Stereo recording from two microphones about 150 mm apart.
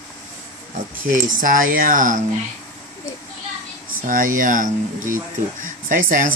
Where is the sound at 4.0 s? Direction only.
65° right (ahead or behind).